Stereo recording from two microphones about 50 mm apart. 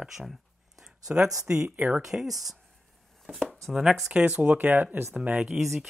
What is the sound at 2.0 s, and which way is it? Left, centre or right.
Speech, centre.